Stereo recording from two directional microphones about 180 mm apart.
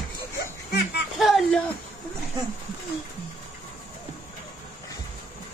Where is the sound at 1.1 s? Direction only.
Centre (ahead or behind).